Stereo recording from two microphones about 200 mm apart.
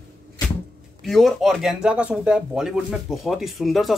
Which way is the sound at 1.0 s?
Centre (ahead or behind).